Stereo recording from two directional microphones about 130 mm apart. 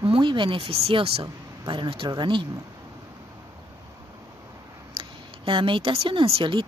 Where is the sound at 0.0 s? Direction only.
40° right (ahead or behind).